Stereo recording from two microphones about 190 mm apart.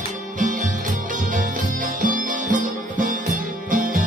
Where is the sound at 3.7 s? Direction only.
45° right (ahead or behind).